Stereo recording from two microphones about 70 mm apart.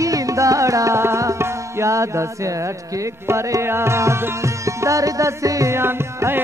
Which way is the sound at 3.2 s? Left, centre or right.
Right.